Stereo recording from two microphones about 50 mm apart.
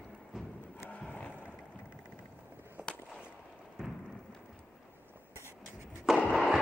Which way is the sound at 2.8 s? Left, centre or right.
Right.